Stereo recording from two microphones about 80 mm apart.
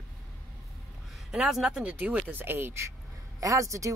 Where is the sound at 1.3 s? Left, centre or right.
Centre.